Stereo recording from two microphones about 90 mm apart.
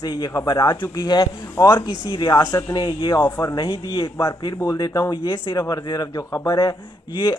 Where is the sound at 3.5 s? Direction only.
60° left (ahead or behind).